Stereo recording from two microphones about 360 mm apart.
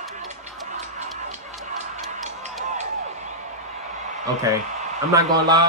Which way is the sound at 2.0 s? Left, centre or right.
Centre.